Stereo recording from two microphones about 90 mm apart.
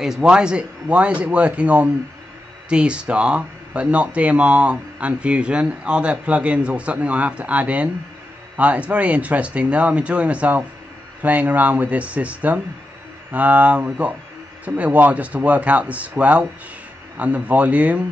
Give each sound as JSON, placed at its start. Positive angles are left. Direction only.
{"t": 0.0, "sound": "speech", "side_deg": -5}